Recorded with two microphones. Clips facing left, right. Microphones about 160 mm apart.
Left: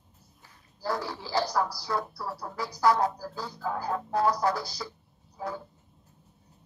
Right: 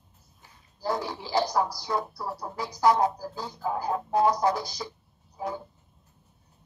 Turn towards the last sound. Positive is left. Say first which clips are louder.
# right 2 dB
turn(degrees=-20)  # may be behind; listen again after turning